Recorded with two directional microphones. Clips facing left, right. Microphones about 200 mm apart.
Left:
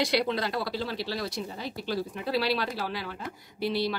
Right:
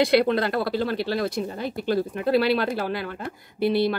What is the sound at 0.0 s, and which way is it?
Speech, 55° right (ahead or behind).